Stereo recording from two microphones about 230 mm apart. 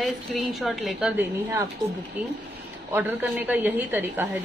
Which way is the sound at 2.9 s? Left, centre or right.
Centre.